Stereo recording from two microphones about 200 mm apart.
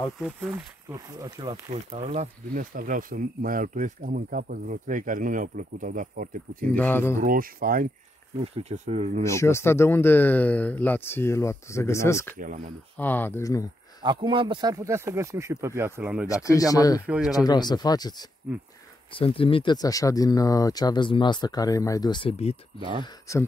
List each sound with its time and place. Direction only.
0.8 s speech: 20° right (ahead or behind)
1.7 s speech: 35° right (ahead or behind)
6.7 s speech: 10° left (ahead or behind)
7.2 s speech: 45° right (ahead or behind)
8.5 s speech: 35° right (ahead or behind)
9.2 s speech: 15° left (ahead or behind)
12.4 s speech: 40° right (ahead or behind)
12.9 s speech: 10° left (ahead or behind)
14.0 s speech: 25° right (ahead or behind); by 16.3 s 5° right (ahead or behind)
16.4 s speech: 15° left (ahead or behind)
17.0 s speech: 5° right (ahead or behind)
17.3 s speech: 20° left (ahead or behind)
19.1 s speech: 25° left (ahead or behind)
22.8 s speech: 25° right (ahead or behind)